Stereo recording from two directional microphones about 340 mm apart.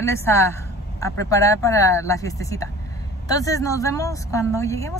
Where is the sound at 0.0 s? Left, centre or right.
Centre.